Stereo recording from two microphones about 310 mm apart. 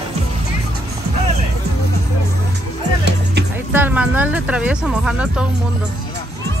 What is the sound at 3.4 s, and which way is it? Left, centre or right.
Music, right.